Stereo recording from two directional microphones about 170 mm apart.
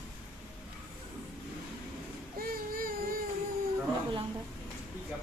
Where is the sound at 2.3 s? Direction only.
60° right (ahead or behind).